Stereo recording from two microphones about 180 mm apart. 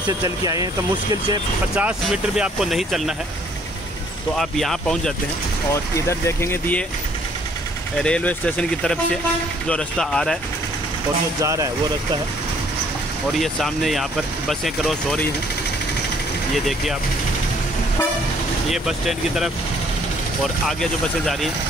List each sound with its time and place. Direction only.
0.2 s speech: 20° right (ahead or behind)
1.8 s speech: 5° right (ahead or behind)
4.4 s speech: centre (ahead or behind)
5.7 s speech: 15° left (ahead or behind)
8.0 s speech: 5° left (ahead or behind)
11.4 s speech: 20° right (ahead or behind)
13.3 s speech: centre (ahead or behind)
18.7 s speech: centre (ahead or behind)
20.6 s speech: centre (ahead or behind)